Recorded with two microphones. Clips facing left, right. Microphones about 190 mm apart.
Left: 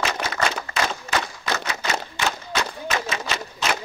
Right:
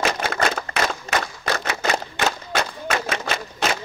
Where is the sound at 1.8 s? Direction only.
45° right (ahead or behind).